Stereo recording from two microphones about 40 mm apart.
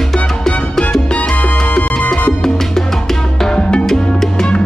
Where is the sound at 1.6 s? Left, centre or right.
Left.